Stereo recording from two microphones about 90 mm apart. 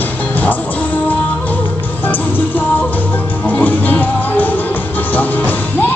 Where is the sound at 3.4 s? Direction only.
15° left (ahead or behind).